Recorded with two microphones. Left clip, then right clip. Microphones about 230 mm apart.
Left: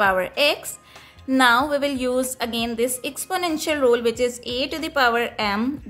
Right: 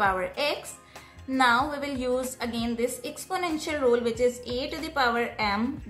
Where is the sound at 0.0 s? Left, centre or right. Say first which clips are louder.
Left 7 dB; left.